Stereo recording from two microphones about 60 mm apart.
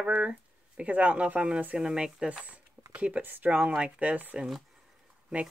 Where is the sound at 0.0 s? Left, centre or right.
Right.